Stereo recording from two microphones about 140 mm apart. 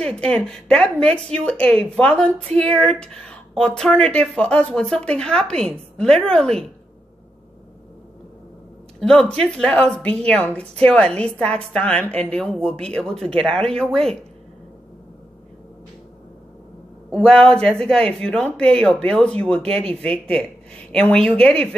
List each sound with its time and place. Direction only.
0.0 s speech: 5° left (ahead or behind)
9.0 s speech: 5° left (ahead or behind)
17.1 s speech: 5° left (ahead or behind)